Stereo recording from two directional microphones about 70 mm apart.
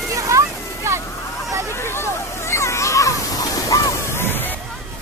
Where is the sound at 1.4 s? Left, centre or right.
Right.